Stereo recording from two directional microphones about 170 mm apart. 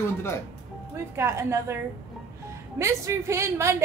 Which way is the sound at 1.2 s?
15° right (ahead or behind).